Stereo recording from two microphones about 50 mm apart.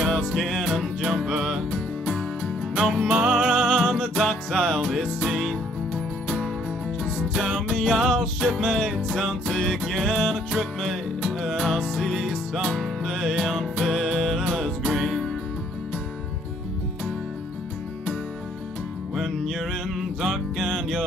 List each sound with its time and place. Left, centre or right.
0.1 s music: centre
1.1 s music: centre
1.7 s music: centre
3.1 s music: centre
7.2 s music: centre
19.1 s music: centre